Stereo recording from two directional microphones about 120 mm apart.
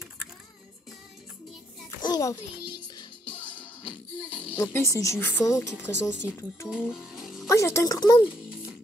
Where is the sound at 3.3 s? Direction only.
10° left (ahead or behind).